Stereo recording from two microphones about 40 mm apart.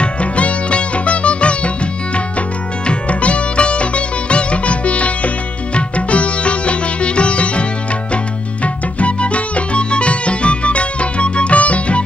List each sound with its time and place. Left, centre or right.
0.0 s music: left
2.9 s music: left
5.8 s sitar: left
8.6 s music: left